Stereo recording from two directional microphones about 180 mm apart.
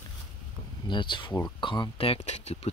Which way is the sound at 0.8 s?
25° left (ahead or behind).